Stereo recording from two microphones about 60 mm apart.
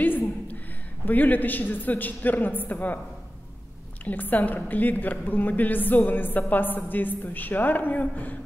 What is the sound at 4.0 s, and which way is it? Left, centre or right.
A woman's voice, left.